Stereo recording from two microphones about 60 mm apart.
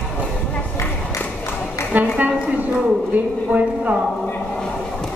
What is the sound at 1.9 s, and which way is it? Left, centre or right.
Speech, right.